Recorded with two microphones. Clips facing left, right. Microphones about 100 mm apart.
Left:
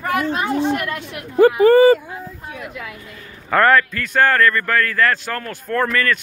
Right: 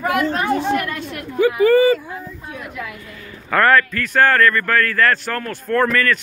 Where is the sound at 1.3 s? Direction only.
35° left (ahead or behind).